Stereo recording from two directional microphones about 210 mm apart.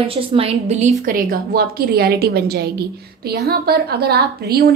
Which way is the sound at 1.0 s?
45° right (ahead or behind).